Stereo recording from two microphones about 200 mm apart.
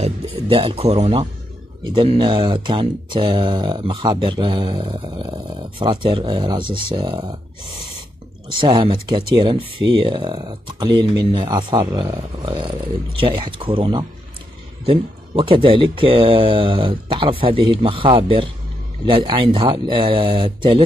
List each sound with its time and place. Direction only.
0.0 s speech: 25° right (ahead or behind)
8.5 s speech: 20° right (ahead or behind)